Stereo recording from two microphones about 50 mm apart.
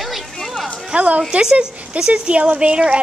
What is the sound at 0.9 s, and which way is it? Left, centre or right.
Speech, right.